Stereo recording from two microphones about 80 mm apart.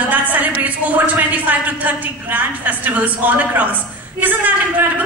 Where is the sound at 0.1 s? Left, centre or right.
Right.